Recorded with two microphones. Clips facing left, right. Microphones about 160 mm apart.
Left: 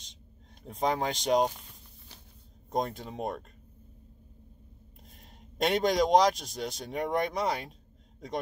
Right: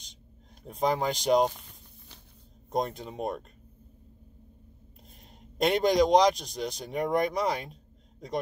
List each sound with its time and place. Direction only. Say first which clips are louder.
0.7 s speech: right 2 dB; centre (ahead or behind)
2.7 s speech: right 1 dB; centre (ahead or behind)
5.6 s speech: right 3 dB; centre (ahead or behind)